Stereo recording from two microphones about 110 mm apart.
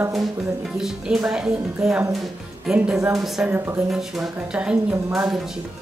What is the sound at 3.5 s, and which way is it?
Speech, 20° right (ahead or behind).